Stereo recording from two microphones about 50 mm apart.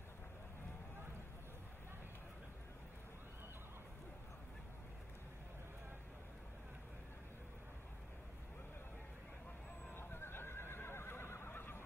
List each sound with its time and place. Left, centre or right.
9.9 s neigh: left